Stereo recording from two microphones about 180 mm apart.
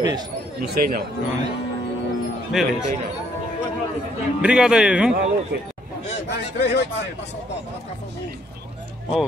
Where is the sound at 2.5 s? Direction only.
Centre (ahead or behind).